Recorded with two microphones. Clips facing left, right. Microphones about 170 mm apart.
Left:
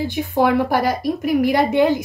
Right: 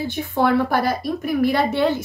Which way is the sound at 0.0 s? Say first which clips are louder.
Left 2 dB; 15° left (ahead or behind).